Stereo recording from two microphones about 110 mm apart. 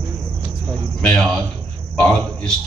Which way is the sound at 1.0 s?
10° left (ahead or behind).